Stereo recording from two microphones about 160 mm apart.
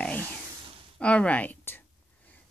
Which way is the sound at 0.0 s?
10° left (ahead or behind).